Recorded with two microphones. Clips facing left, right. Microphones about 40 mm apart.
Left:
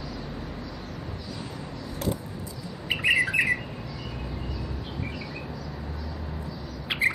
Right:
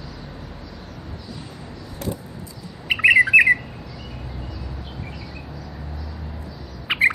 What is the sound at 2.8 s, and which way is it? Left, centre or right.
Bird, right.